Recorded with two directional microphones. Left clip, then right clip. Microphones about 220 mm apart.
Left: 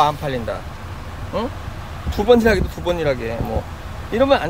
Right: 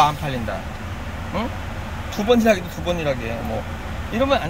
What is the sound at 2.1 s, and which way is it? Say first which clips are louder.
Speech: left 3 dB; 10° left (ahead or behind).